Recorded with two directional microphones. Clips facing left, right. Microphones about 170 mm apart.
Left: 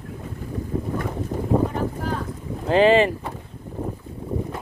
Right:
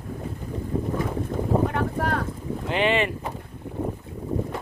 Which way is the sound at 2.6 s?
35° left (ahead or behind).